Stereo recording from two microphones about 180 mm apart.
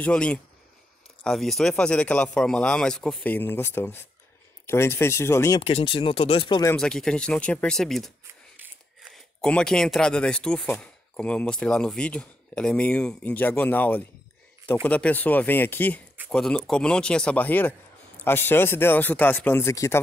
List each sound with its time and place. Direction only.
0.0 s speech: 5° left (ahead or behind)
5.6 s speech: 35° left (ahead or behind)
6.8 s speech: 5° left (ahead or behind)
9.1 s speech: 5° left (ahead or behind)